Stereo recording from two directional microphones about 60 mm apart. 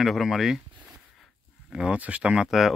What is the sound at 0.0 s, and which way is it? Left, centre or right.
Speech, centre.